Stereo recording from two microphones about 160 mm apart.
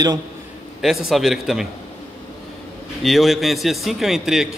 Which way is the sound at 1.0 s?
Centre (ahead or behind).